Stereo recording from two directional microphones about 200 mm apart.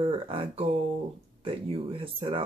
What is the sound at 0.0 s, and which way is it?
Speech, 25° right (ahead or behind).